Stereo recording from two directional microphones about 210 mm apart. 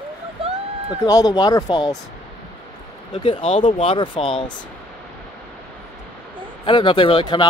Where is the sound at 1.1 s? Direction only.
20° left (ahead or behind).